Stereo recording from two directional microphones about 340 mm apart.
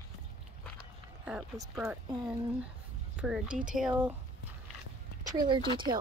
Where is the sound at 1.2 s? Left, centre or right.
Centre.